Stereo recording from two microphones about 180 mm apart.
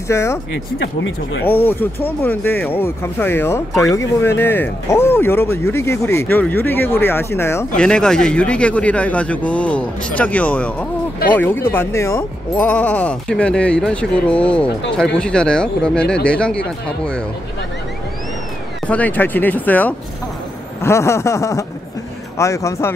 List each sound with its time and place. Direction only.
0.1 s speech: 15° left (ahead or behind)
1.4 s speech: 10° left (ahead or behind)
18.9 s speech: 10° left (ahead or behind)